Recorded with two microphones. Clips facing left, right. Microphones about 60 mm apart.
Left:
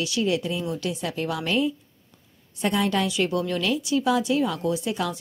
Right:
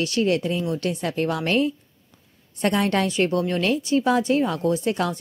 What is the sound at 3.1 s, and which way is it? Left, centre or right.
Speech, right.